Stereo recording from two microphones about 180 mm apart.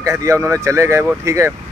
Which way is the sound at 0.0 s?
15° right (ahead or behind).